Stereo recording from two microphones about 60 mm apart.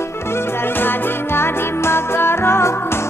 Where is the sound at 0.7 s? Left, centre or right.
Left.